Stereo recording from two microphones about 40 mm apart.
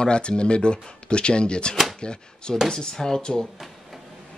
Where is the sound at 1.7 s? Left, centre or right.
Centre.